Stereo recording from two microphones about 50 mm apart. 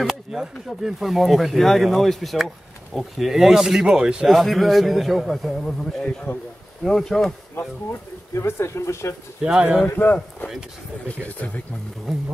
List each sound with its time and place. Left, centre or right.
0.0 s speech: centre
4.3 s speech: centre
8.4 s speech: left
9.4 s speech: centre
9.9 s speech: left